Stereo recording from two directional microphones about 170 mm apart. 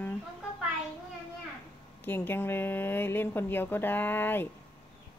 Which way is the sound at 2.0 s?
10° left (ahead or behind).